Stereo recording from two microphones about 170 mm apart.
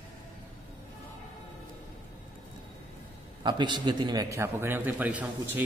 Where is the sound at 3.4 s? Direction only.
25° right (ahead or behind).